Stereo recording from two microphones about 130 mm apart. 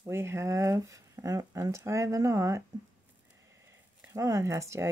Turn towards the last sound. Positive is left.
turn(degrees=-20)  # may be behind; listen again after turning